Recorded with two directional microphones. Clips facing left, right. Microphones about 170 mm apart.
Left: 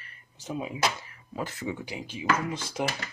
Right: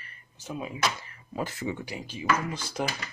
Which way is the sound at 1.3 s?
5° right (ahead or behind).